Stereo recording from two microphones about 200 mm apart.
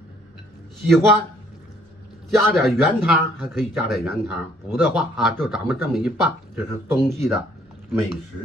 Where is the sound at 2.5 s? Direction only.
Centre (ahead or behind).